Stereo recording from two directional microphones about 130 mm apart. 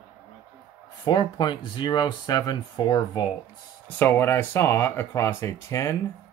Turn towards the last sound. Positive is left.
turn(degrees=20)  # may be behind; listen again after turning